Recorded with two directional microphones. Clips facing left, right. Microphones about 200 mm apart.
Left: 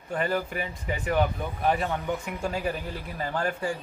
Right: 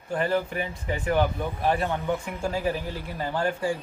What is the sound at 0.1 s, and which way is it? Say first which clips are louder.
Speech: right 2 dB; centre (ahead or behind).